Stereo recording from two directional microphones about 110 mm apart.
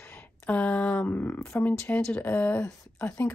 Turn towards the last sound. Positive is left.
turn(degrees=20)  # may be behind; listen again after turning